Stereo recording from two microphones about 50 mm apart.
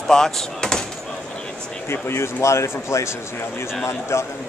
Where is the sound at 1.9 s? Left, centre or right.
Left.